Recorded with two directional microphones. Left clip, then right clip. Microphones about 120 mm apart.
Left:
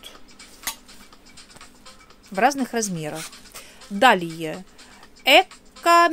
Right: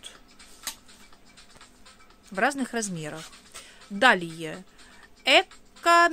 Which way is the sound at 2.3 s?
25° right (ahead or behind).